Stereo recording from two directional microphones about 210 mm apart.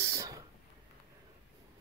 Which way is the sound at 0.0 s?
15° right (ahead or behind).